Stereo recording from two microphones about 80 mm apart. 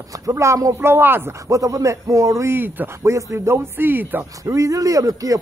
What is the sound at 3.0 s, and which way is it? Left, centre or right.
Speech, right.